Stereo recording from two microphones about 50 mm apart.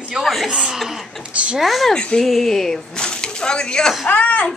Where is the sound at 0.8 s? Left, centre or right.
Centre.